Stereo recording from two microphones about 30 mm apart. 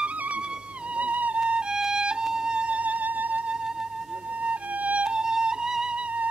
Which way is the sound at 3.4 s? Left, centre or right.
Right.